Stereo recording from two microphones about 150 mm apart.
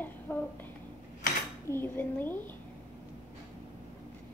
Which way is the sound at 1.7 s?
15° left (ahead or behind).